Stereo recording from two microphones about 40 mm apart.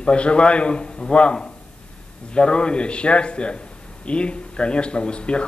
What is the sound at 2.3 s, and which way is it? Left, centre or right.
Speech, left.